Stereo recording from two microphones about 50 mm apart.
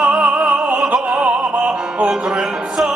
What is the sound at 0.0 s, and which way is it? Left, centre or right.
Opera, right.